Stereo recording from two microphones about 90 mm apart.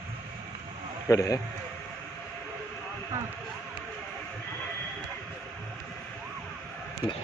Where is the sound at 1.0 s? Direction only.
40° left (ahead or behind).